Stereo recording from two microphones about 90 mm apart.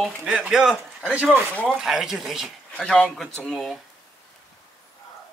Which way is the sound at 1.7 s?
5° right (ahead or behind).